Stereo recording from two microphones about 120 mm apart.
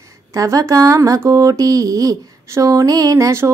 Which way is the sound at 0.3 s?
30° right (ahead or behind).